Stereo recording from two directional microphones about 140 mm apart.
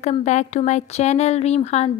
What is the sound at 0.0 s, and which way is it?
Speech, 55° left (ahead or behind).